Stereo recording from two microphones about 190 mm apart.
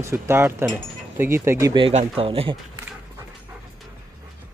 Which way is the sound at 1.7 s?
30° right (ahead or behind).